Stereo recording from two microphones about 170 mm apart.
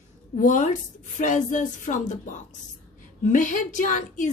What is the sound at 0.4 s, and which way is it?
A woman's voice, 50° left (ahead or behind).